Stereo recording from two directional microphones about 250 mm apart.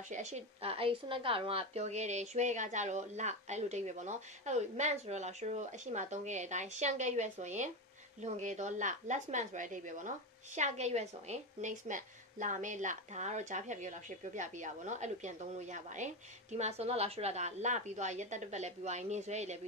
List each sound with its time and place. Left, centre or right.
0.1 s a woman's voice: right